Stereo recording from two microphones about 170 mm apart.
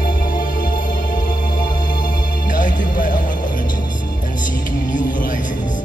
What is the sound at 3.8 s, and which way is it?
Music, 25° left (ahead or behind).